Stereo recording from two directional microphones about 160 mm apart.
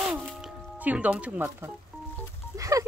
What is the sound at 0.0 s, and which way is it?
Music, centre (ahead or behind).